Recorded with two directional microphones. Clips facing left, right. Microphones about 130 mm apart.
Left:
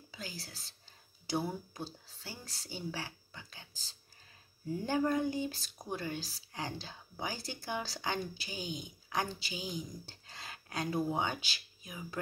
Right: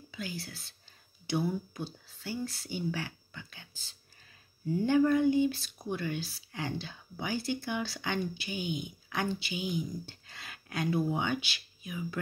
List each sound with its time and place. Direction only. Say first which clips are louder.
0.1 s speech: right 6 dB; 35° left (ahead or behind)